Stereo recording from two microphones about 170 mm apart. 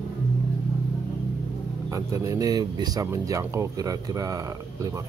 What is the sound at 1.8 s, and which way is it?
Speech, 20° right (ahead or behind).